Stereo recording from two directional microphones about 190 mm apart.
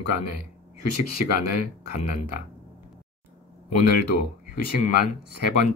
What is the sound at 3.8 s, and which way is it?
Speech, 50° left (ahead or behind).